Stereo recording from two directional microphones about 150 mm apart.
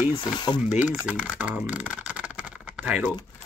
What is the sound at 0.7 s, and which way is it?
Speech, 10° right (ahead or behind).